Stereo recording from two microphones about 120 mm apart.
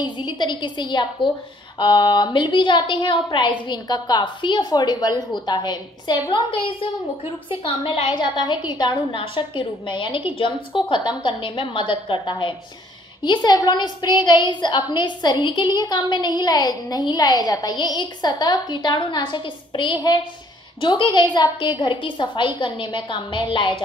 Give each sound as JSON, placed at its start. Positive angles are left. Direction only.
{"t": 0.0, "sound": "a woman's voice", "side_deg": 40}